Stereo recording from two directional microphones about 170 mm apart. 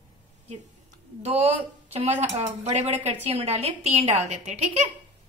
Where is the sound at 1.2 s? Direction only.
40° right (ahead or behind).